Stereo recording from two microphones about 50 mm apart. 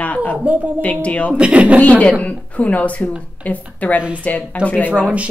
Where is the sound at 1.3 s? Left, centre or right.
Right.